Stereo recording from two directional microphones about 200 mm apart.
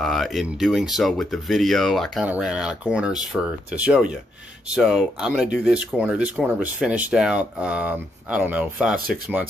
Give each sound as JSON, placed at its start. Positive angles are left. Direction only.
{"t": 0.0, "sound": "speech", "side_deg": 0}
{"t": 8.9, "sound": "speech", "side_deg": -45}